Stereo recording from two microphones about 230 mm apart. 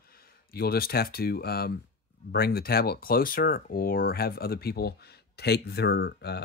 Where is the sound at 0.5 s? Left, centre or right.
Left.